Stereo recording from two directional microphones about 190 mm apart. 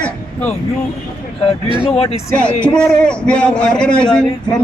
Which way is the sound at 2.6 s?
5° left (ahead or behind).